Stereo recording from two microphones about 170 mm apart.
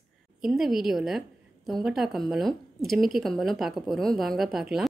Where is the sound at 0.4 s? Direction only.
Centre (ahead or behind).